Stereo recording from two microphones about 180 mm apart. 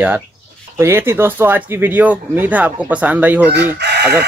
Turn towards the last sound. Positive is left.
turn(degrees=-65)  # may be behind; listen again after turning